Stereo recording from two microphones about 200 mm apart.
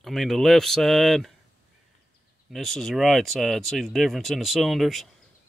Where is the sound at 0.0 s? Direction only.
Centre (ahead or behind).